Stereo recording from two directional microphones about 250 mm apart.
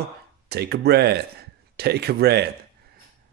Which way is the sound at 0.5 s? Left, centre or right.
Right.